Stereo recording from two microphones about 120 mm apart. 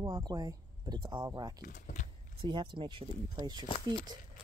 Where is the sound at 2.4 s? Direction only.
40° right (ahead or behind).